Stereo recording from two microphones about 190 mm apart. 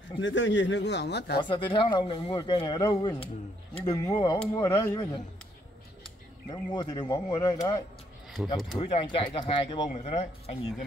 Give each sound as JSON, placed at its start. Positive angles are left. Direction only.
{"t": 0.2, "sound": "speech", "side_deg": 75}
{"t": 1.4, "sound": "speech", "side_deg": 25}